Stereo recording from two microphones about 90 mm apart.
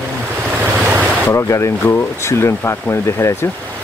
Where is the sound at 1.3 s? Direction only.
30° left (ahead or behind).